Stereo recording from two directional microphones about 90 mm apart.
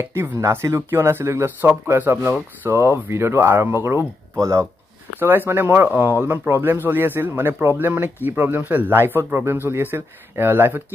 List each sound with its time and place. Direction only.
0.0 s speech: 30° right (ahead or behind)